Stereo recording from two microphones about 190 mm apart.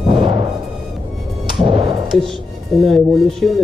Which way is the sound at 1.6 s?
25° right (ahead or behind).